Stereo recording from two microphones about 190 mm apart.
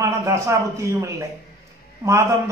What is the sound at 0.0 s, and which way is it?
A man's voice, 15° right (ahead or behind).